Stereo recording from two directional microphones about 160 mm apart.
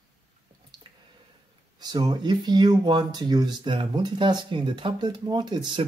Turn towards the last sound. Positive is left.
turn(degrees=-30)  # may be behind; listen again after turning